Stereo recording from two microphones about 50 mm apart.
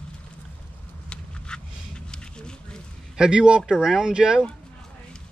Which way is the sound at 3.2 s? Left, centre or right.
Centre.